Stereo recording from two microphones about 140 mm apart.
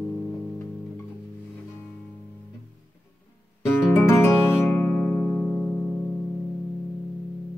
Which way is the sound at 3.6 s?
20° left (ahead or behind).